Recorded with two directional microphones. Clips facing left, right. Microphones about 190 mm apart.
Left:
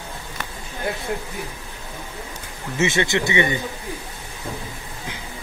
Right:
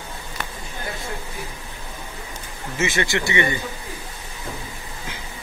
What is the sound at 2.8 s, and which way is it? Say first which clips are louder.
Speech: left 3 dB; 20° left (ahead or behind).